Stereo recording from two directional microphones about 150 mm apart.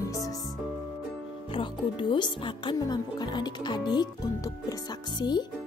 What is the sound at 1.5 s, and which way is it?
Speech, 35° left (ahead or behind).